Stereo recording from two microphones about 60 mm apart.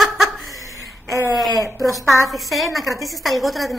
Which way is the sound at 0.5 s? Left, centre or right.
Right.